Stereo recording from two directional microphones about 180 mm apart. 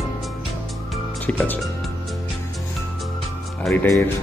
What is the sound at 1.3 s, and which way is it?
Music, 5° left (ahead or behind).